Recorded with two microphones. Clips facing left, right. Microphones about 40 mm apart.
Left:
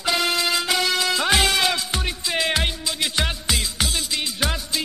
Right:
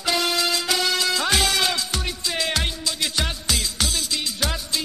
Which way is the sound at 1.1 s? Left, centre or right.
Centre.